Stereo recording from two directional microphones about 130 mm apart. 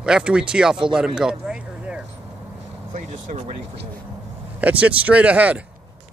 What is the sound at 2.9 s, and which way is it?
Vehicle, 75° right (ahead or behind).